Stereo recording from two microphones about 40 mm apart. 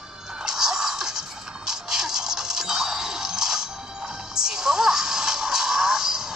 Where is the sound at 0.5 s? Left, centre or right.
Centre.